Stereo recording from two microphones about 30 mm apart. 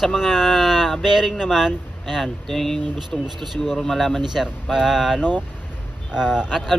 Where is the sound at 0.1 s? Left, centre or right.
Centre.